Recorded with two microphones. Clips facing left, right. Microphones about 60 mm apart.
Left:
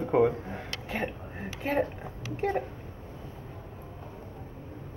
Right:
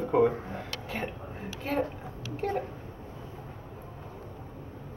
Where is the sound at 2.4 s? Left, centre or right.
Centre.